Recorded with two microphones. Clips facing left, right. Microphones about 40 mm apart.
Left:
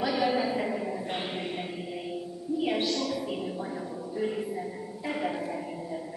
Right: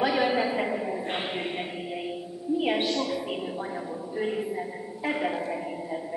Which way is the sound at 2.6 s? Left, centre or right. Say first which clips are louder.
Right 1 dB; right.